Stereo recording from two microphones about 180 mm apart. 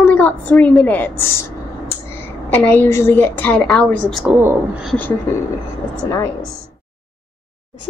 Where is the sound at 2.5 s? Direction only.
10° left (ahead or behind).